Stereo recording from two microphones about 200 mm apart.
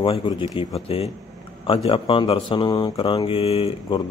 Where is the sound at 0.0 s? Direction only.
25° left (ahead or behind).